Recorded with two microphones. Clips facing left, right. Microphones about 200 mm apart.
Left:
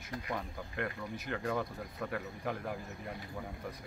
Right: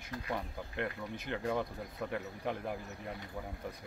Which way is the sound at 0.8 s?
25° right (ahead or behind).